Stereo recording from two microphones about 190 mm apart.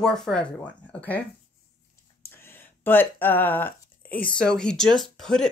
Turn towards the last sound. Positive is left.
turn(degrees=0)  # may be behind; listen again after turning